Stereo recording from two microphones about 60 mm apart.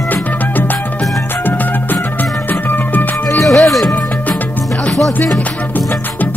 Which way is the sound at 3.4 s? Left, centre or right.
Centre.